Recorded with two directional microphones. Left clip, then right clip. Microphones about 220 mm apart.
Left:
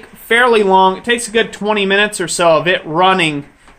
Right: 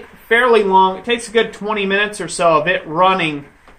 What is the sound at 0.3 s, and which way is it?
Speech, 55° left (ahead or behind).